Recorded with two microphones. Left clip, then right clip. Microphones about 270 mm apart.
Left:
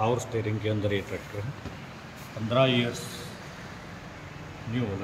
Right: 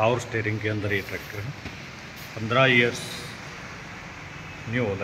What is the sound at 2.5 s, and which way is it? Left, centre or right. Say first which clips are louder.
Speech: right 4 dB; right.